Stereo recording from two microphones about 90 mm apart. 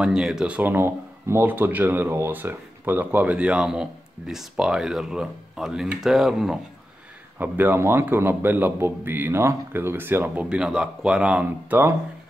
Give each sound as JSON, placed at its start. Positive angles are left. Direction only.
{"t": 0.0, "sound": "speech", "side_deg": -5}
{"t": 7.3, "sound": "a man's voice", "side_deg": -20}